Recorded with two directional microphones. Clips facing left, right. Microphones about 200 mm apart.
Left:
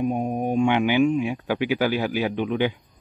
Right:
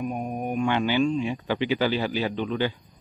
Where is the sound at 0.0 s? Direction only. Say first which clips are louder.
Left 5 dB; 25° left (ahead or behind).